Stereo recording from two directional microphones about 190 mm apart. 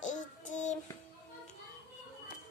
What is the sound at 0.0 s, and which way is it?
Child singing, 40° left (ahead or behind).